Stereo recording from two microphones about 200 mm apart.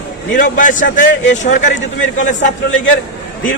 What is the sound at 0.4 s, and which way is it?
A man's voice, 40° left (ahead or behind).